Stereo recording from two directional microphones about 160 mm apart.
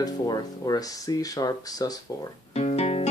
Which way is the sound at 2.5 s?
40° left (ahead or behind).